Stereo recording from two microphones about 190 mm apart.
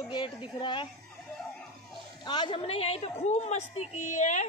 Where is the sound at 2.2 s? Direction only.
25° left (ahead or behind); by 4.4 s 40° left (ahead or behind).